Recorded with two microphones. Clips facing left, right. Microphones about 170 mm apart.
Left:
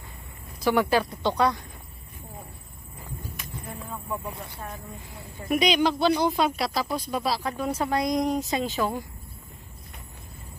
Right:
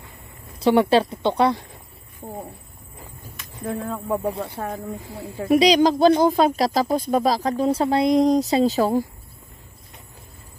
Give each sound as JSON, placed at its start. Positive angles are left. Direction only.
{"t": 0.6, "sound": "a woman's voice", "side_deg": -30}
{"t": 3.6, "sound": "speech", "side_deg": -90}
{"t": 5.5, "sound": "speech", "side_deg": -35}